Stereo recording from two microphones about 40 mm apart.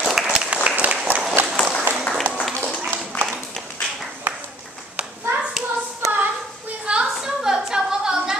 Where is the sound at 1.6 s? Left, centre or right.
Left.